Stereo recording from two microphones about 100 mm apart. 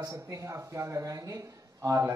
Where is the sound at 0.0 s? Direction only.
35° right (ahead or behind).